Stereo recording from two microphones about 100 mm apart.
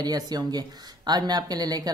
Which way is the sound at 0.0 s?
40° right (ahead or behind).